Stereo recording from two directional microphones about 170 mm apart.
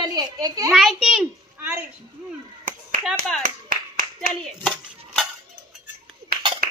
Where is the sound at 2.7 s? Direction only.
50° right (ahead or behind).